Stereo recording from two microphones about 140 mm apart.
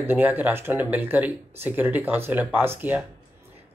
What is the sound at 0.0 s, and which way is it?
Speech, 15° right (ahead or behind).